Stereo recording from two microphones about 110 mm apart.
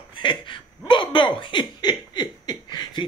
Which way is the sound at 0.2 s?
45° left (ahead or behind).